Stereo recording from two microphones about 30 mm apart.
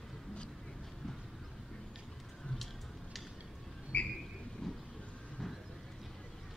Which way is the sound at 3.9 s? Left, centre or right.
Left.